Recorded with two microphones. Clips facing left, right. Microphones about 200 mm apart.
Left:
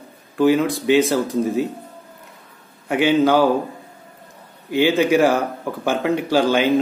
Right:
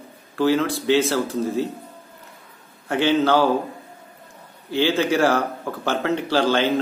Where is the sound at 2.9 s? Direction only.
15° left (ahead or behind).